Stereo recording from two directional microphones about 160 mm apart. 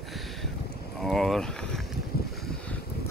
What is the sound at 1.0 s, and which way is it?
Speech, centre (ahead or behind).